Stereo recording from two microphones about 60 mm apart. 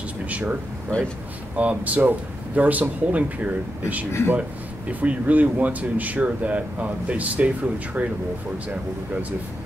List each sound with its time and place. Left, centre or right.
0.3 s speech: right
0.8 s speech: centre
1.6 s speech: right